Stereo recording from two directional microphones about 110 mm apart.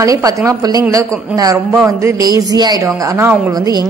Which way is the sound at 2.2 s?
35° right (ahead or behind).